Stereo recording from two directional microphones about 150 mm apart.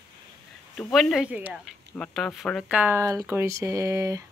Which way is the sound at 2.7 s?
15° right (ahead or behind).